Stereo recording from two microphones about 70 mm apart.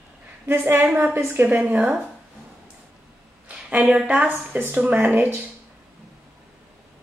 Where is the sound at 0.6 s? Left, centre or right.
Right.